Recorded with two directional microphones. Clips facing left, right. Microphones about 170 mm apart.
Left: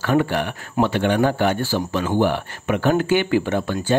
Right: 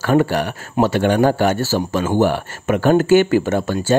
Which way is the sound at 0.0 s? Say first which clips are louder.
Right 3 dB; 40° right (ahead or behind).